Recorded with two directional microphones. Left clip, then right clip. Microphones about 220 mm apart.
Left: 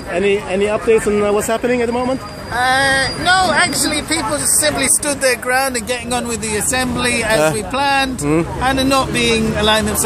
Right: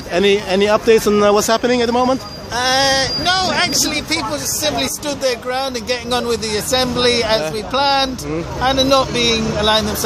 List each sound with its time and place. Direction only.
0.1 s speech: 35° right (ahead or behind)
1.5 s speech: 20° right (ahead or behind)
2.0 s speech: 35° right (ahead or behind)
5.0 s speech: centre (ahead or behind)